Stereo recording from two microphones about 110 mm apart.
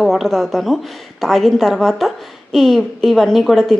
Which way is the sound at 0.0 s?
Centre (ahead or behind).